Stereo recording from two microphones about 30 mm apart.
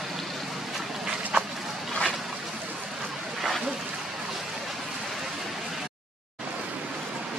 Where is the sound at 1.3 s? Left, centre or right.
Right.